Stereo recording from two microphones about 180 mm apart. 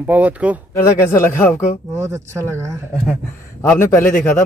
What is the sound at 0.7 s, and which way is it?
Speech, 15° left (ahead or behind).